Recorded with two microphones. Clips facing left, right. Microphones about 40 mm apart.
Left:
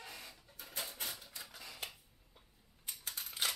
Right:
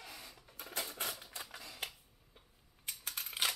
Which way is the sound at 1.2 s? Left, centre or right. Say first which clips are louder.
Right 4 dB; right.